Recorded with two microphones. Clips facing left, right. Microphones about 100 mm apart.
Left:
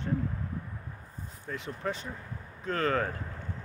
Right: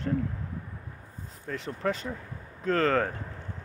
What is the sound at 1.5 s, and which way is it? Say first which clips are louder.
Speech: right 3 dB; 65° right (ahead or behind).